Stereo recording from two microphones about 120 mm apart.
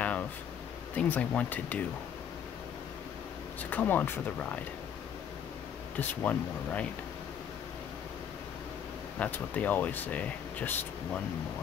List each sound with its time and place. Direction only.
0.9 s speech: 15° left (ahead or behind)
3.7 s speech: 15° left (ahead or behind)
5.9 s speech: 10° left (ahead or behind)
9.2 s speech: 15° left (ahead or behind)